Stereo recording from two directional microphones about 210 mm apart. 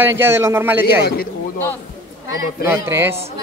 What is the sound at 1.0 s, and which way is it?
Speech, 45° left (ahead or behind).